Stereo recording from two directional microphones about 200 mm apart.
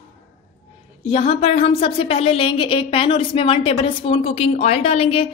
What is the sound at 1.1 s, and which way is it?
A woman's voice, 30° left (ahead or behind).